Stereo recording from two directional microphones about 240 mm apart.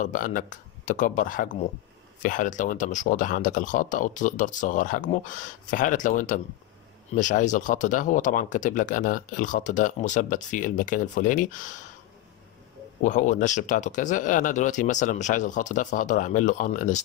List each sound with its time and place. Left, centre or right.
0.0 s speech: left
13.0 s speech: left